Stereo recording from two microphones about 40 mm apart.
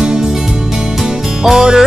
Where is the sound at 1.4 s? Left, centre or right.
Centre.